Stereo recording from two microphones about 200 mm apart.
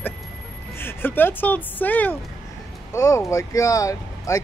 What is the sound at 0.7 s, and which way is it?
Speech, 10° left (ahead or behind).